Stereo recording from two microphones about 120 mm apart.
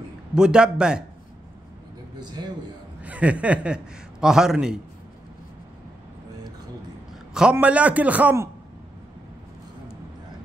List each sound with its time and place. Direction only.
0.3 s a man's voice: 5° right (ahead or behind)
2.1 s a sound: 35° right (ahead or behind)
3.0 s a man's voice: 10° right (ahead or behind)
7.5 s a man's voice: 10° right (ahead or behind)